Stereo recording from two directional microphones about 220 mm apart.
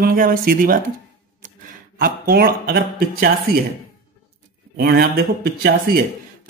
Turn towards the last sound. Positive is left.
turn(degrees=-40)  # may be behind; listen again after turning